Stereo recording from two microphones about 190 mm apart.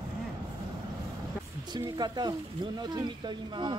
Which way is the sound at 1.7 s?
20° right (ahead or behind).